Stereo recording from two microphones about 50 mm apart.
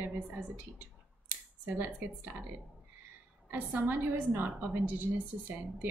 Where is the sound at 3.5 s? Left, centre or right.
Right.